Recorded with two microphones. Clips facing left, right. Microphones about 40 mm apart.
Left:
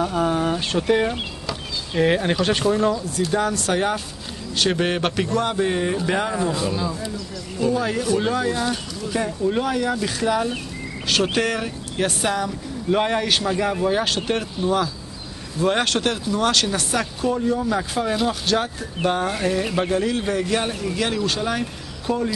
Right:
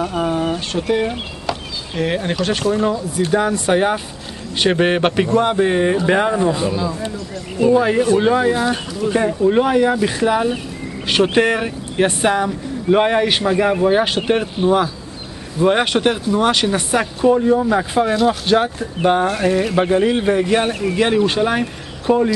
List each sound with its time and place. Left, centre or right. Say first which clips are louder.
0.0 s speech: right 1 dB; centre
0.3 s speech: right 2 dB; centre
3.3 s speech: right 6 dB; centre
15.6 s speech: right 5 dB; centre